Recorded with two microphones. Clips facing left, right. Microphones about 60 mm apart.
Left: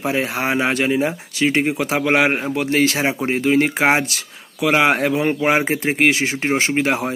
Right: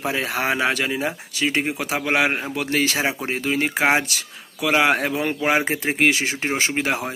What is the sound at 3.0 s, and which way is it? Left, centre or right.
Speech, left.